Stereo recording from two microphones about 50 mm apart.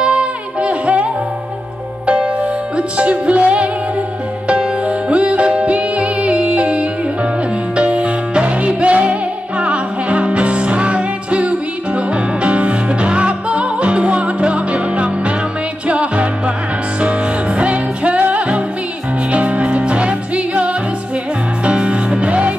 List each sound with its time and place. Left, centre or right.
0.0 s music: right
2.0 s music: centre